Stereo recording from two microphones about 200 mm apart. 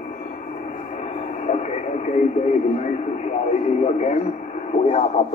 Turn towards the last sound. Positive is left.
turn(degrees=35)  # may be behind; listen again after turning